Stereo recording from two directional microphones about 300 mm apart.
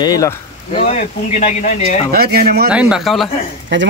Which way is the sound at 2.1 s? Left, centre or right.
Right.